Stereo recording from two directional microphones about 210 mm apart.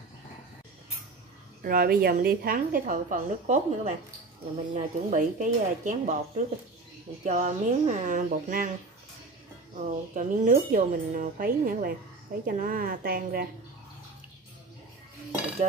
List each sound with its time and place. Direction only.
1.6 s a woman's voice: 45° right (ahead or behind)
9.8 s a woman's voice: 35° right (ahead or behind)